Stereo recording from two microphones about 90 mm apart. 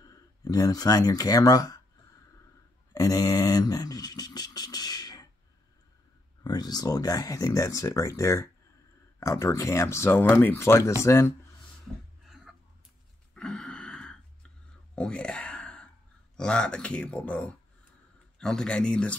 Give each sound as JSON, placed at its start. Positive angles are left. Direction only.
{"t": 0.0, "sound": "speech", "side_deg": 45}
{"t": 2.9, "sound": "speech", "side_deg": 40}
{"t": 6.4, "sound": "speech", "side_deg": 50}
{"t": 13.3, "sound": "a sound", "side_deg": 10}
{"t": 16.3, "sound": "speech", "side_deg": 10}